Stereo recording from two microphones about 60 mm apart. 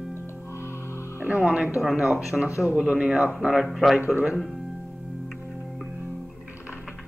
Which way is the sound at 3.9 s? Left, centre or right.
Right.